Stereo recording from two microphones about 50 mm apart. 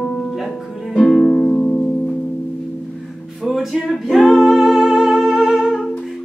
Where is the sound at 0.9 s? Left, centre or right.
Centre.